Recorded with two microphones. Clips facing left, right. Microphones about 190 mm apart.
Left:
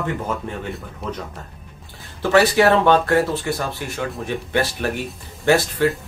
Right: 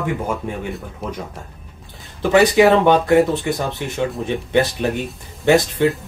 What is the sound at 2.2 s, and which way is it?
Speech, 15° right (ahead or behind).